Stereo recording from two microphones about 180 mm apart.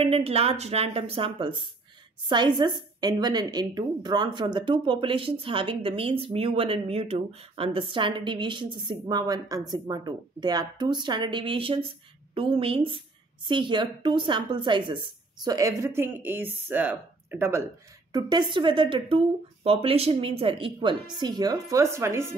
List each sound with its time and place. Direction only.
0.0 s a woman's voice: 35° right (ahead or behind); by 17.6 s 15° right (ahead or behind)
18.1 s a woman's voice: 25° right (ahead or behind)